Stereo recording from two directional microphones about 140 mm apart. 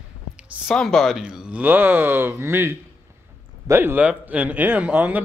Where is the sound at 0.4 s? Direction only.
Centre (ahead or behind).